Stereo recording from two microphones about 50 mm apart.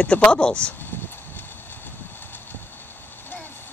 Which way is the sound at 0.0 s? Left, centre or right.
Left.